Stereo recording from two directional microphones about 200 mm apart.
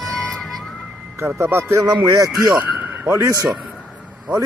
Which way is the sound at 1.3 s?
10° right (ahead or behind).